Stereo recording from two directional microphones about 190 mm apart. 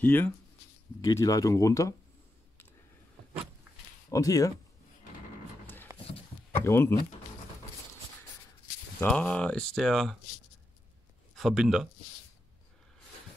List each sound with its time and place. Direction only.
0.0 s speech: 10° left (ahead or behind)
4.1 s speech: 20° left (ahead or behind)
5.9 s a sound: 15° right (ahead or behind)
6.5 s speech: 10° left (ahead or behind)
9.0 s speech: 5° left (ahead or behind)
11.3 s speech: centre (ahead or behind)